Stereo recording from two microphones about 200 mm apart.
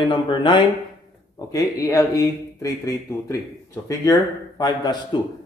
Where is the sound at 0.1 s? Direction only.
25° left (ahead or behind).